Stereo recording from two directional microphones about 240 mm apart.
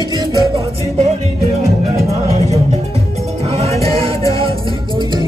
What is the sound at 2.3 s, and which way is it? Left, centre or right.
Music, right.